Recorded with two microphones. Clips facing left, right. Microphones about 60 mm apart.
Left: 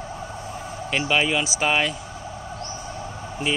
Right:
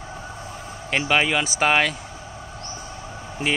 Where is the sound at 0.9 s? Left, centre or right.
Right.